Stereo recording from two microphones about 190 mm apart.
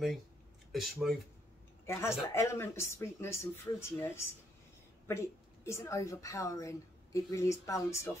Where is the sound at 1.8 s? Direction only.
15° left (ahead or behind).